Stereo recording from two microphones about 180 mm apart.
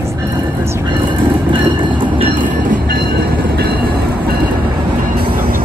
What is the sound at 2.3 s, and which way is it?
Train, 45° right (ahead or behind).